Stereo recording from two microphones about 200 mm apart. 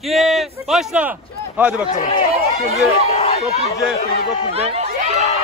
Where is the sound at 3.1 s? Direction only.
30° left (ahead or behind).